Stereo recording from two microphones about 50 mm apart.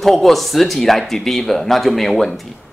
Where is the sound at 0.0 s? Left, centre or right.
Centre.